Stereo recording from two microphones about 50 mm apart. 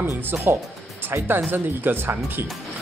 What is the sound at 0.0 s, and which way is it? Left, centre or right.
Speech, right.